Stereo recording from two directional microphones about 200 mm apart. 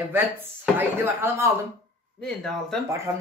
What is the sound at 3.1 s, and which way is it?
Speech, 15° right (ahead or behind).